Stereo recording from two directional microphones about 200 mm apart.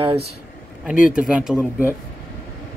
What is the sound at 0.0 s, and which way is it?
Speech, 30° right (ahead or behind).